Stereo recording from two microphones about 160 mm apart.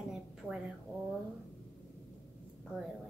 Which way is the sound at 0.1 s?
Centre (ahead or behind).